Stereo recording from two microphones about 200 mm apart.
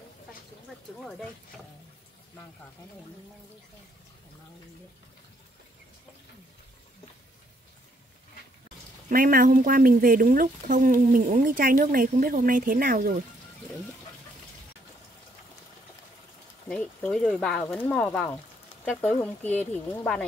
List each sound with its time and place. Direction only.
9.1 s speech: 45° right (ahead or behind)
16.6 s speech: 5° left (ahead or behind)